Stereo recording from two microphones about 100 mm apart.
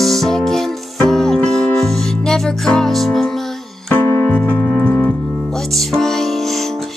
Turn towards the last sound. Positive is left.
turn(degrees=0)  # may be behind; listen again after turning